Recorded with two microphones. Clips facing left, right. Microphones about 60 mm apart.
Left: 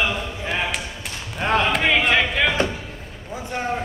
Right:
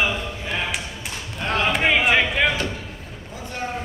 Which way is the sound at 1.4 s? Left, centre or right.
Left.